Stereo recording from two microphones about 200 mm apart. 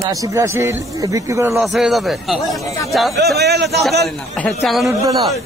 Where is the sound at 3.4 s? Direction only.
55° right (ahead or behind).